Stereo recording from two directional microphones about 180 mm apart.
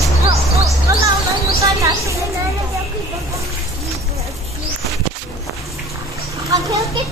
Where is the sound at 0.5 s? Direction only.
15° right (ahead or behind).